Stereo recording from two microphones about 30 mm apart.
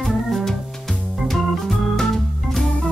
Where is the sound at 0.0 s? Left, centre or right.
Centre.